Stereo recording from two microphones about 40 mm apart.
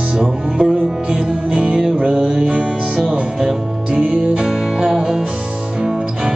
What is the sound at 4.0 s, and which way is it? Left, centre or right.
Music, right.